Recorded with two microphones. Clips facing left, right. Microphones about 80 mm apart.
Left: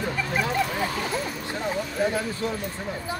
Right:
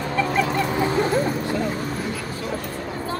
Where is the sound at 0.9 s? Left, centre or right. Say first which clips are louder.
Right 8 dB; right.